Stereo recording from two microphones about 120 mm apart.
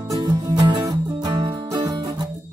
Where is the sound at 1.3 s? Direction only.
35° right (ahead or behind).